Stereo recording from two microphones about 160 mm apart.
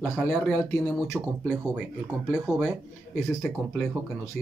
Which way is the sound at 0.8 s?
Centre (ahead or behind).